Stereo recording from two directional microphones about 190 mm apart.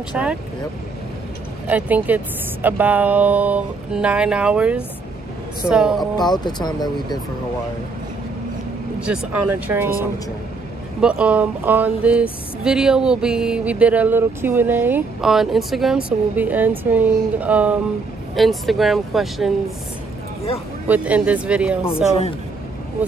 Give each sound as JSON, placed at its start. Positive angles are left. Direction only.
{"t": 0.1, "sound": "speech", "side_deg": -5}
{"t": 1.7, "sound": "speech", "side_deg": -10}
{"t": 6.1, "sound": "speech", "side_deg": 20}
{"t": 9.0, "sound": "speech", "side_deg": -5}
{"t": 11.0, "sound": "speech", "side_deg": -5}
{"t": 20.9, "sound": "speech", "side_deg": -5}